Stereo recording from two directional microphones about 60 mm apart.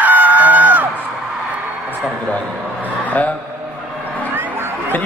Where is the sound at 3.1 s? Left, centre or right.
Left.